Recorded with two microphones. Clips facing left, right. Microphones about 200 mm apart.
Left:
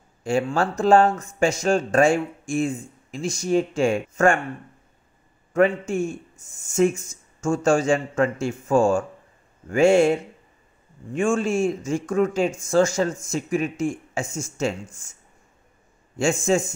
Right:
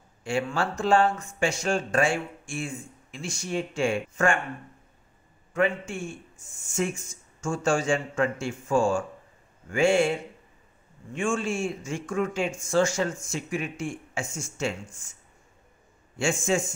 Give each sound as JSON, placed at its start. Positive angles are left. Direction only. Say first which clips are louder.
{"t": 0.2, "sound": "speech", "louder": "left 5 dB", "side_deg": 40}
{"t": 5.5, "sound": "speech", "louder": "left 6 dB", "side_deg": 40}
{"t": 11.1, "sound": "speech", "louder": "left 6 dB", "side_deg": 40}
{"t": 16.2, "sound": "speech", "louder": "left 5 dB", "side_deg": 40}